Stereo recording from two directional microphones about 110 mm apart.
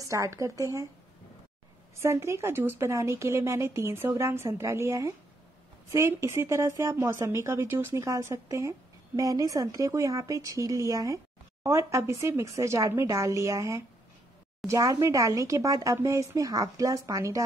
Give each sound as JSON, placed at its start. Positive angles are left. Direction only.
{"t": 0.0, "sound": "speech", "side_deg": -30}
{"t": 2.0, "sound": "a woman's voice", "side_deg": -25}